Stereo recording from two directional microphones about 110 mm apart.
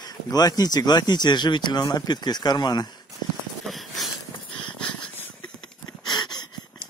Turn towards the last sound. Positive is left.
turn(degrees=40)  # may be behind; listen again after turning